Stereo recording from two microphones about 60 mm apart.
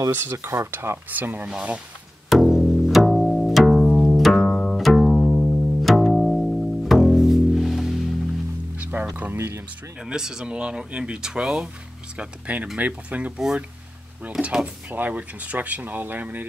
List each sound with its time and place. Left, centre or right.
0.1 s speech: right
2.2 s pizzicato: centre
8.7 s music: right
9.1 s a sound: right
10.0 s speech: centre
12.2 s speech: right
14.4 s speech: centre
14.9 s speech: right